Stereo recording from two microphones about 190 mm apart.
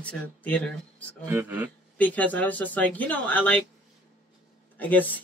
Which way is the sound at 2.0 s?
10° left (ahead or behind).